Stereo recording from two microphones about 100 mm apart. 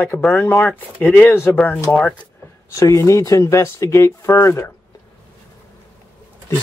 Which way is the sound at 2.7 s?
30° left (ahead or behind).